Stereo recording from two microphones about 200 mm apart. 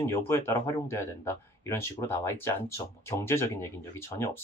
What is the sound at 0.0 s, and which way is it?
Speech, 15° left (ahead or behind).